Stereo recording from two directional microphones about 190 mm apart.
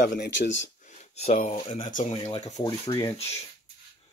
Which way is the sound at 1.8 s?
45° left (ahead or behind).